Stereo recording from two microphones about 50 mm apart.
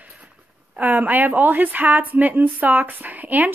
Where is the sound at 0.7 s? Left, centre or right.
Right.